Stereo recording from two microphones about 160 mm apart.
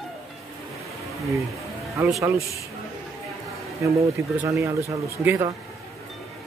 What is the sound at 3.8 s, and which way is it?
Speech, 20° right (ahead or behind).